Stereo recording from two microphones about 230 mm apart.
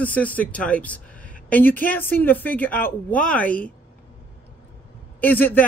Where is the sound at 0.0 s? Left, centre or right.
Centre.